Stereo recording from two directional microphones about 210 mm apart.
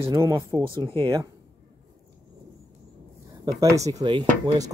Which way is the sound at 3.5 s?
15° right (ahead or behind).